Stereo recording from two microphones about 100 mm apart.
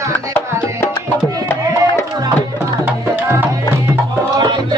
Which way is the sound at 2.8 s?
20° right (ahead or behind).